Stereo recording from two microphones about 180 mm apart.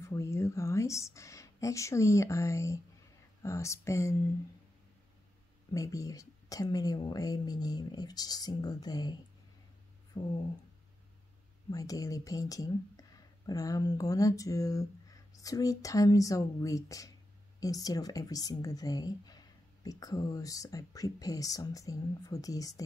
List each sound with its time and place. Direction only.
0.0 s speech: 15° left (ahead or behind)
5.7 s speech: 20° left (ahead or behind)
11.7 s speech: 20° left (ahead or behind)